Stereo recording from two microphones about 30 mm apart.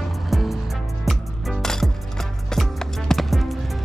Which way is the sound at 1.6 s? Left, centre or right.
Centre.